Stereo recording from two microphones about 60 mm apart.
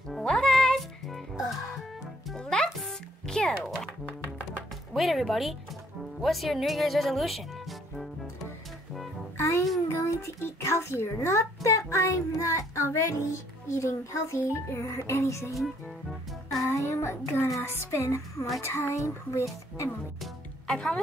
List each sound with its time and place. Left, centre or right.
0.2 s music: centre
2.3 s music: centre
4.9 s speech: centre
9.4 s music: left
9.8 s a child's voice: left
15.5 s music: centre
16.8 s child singing: left
17.6 s speech: left
20.7 s a woman's voice: centre